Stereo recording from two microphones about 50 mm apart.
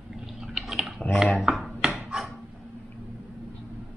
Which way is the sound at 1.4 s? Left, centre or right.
Centre.